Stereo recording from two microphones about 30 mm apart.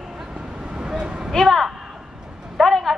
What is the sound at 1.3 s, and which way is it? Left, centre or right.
Speech, centre.